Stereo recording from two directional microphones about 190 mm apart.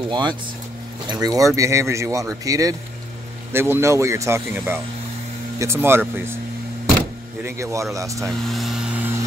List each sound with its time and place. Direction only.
0.1 s speech: 25° right (ahead or behind)
7.4 s speech: 15° right (ahead or behind)
8.3 s speech: centre (ahead or behind)